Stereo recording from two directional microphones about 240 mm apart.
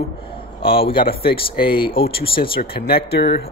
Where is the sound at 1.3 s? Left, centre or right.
Left.